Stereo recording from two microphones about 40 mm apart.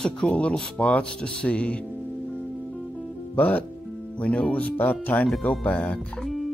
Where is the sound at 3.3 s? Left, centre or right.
Left.